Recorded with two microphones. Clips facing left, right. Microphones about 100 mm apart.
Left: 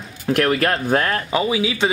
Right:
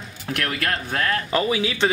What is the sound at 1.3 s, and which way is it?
Speech, 15° left (ahead or behind).